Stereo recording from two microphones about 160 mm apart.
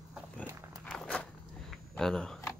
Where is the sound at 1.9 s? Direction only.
5° left (ahead or behind).